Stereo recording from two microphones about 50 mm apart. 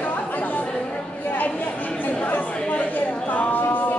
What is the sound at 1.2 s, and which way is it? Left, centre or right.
Chatter, left.